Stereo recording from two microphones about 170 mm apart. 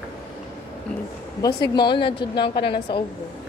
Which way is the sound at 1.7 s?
25° left (ahead or behind).